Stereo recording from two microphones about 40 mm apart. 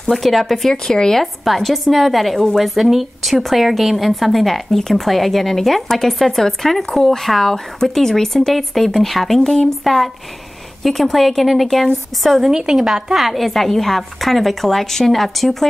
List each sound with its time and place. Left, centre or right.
0.1 s speech: centre
1.2 s a woman's voice: centre
12.4 s a woman's voice: centre
13.2 s a woman's voice: centre